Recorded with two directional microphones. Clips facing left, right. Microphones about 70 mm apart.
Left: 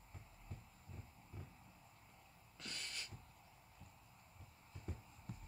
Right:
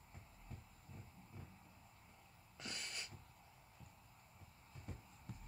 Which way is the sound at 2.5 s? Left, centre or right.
Centre.